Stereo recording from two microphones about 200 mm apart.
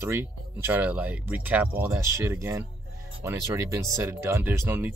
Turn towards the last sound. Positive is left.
turn(degrees=-10)  # may be behind; listen again after turning